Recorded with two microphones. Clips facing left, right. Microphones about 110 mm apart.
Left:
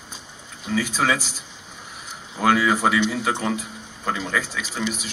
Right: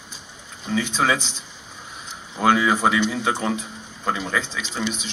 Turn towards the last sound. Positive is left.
turn(degrees=-25)  # may be behind; listen again after turning